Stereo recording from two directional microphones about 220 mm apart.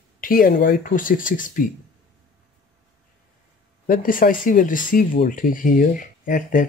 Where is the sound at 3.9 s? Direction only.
40° left (ahead or behind).